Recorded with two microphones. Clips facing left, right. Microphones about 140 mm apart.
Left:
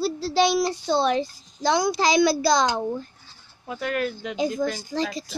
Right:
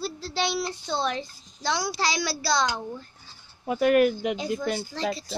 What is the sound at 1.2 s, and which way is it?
Speech, 45° left (ahead or behind).